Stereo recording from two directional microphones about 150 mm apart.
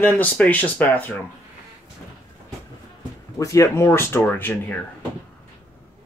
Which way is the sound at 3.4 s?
20° left (ahead or behind).